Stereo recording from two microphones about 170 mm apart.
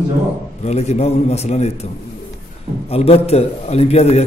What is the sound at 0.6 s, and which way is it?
A man's voice, 40° left (ahead or behind).